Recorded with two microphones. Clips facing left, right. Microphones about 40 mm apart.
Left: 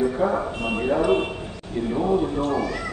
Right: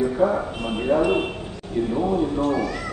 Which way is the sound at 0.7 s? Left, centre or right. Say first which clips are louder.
Right 1 dB; centre.